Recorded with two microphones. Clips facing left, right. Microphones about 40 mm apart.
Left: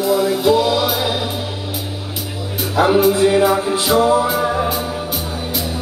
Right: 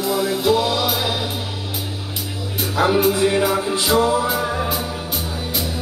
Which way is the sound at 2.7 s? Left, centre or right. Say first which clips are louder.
Left 4 dB; centre.